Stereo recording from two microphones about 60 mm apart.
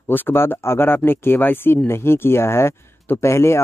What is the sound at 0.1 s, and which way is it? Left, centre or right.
Speech, left.